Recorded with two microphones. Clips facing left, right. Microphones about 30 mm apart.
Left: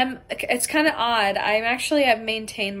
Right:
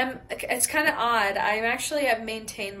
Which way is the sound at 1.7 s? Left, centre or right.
Left.